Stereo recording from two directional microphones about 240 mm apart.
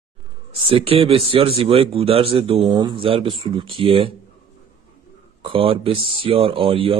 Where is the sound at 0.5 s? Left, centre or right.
Right.